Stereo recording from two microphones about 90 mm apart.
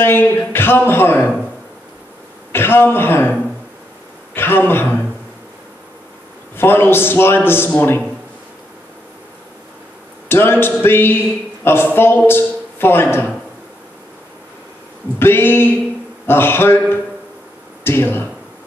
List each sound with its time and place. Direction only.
0.0 s a man's voice: 25° left (ahead or behind)
2.5 s a man's voice: 25° left (ahead or behind)
6.5 s a man's voice: 25° left (ahead or behind)
10.2 s a man's voice: 25° left (ahead or behind)
15.1 s a man's voice: 25° left (ahead or behind)
17.8 s a man's voice: 25° left (ahead or behind)